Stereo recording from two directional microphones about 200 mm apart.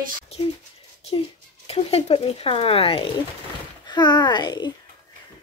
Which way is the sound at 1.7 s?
30° left (ahead or behind).